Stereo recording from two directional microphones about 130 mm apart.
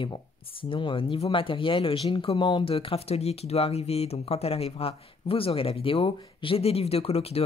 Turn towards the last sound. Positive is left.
turn(degrees=50)  # may be behind; listen again after turning